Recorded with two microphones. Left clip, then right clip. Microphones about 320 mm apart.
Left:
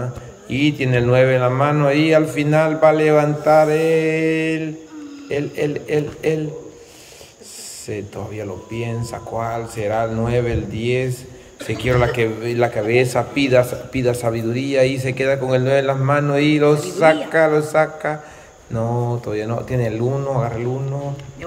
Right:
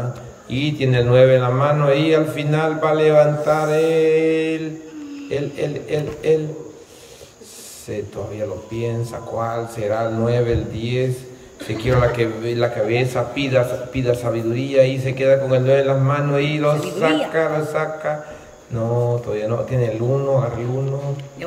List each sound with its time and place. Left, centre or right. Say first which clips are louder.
0.5 s a man's voice: left 3 dB; centre
7.9 s a man's voice: right 1 dB; centre